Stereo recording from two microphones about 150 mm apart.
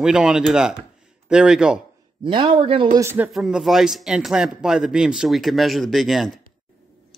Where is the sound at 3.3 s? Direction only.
Centre (ahead or behind).